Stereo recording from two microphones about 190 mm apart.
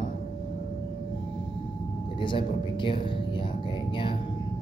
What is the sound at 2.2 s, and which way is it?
Speech, 25° left (ahead or behind).